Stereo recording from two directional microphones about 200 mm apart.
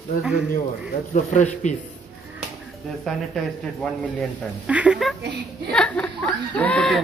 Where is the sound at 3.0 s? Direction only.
Centre (ahead or behind).